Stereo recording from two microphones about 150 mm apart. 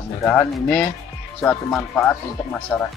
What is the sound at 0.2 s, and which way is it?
Speech, 5° left (ahead or behind).